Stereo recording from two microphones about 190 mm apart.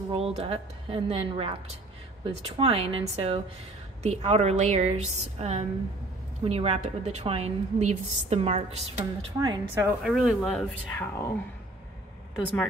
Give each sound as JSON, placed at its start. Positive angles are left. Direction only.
{"t": 0.1, "sound": "a woman's voice", "side_deg": -30}
{"t": 9.4, "sound": "speech", "side_deg": -20}
{"t": 10.0, "sound": "speech", "side_deg": 0}
{"t": 11.1, "sound": "speech", "side_deg": 15}